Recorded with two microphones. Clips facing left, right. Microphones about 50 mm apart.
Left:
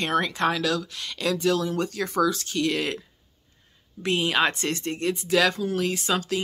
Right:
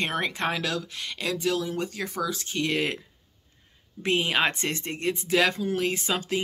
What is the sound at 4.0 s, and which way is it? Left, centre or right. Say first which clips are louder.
Speech: left 1 dB; right.